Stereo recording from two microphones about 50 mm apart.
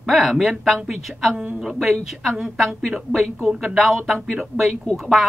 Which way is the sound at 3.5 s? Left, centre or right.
Centre.